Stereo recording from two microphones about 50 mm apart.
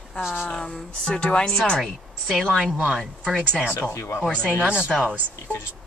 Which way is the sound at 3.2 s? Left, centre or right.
Centre.